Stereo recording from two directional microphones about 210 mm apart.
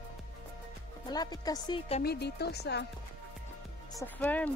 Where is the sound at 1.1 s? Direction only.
20° left (ahead or behind).